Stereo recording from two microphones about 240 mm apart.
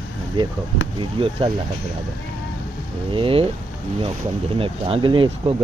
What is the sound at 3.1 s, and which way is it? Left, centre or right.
Speech, right.